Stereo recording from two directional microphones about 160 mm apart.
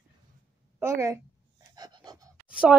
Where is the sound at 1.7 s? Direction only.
25° right (ahead or behind).